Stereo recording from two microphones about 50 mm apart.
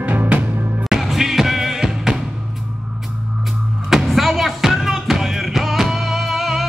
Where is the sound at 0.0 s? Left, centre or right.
Right.